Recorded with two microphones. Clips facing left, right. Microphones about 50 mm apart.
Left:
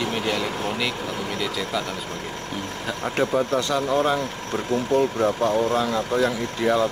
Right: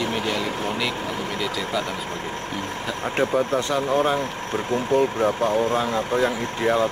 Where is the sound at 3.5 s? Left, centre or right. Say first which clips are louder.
Even; right.